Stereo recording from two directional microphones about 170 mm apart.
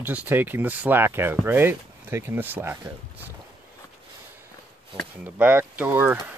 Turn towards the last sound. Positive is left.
turn(degrees=-15)  # may be behind; listen again after turning